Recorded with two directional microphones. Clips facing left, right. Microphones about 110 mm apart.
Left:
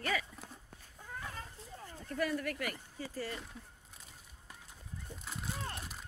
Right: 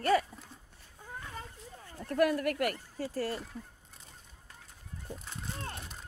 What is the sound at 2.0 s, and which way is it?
Speech, 60° right (ahead or behind).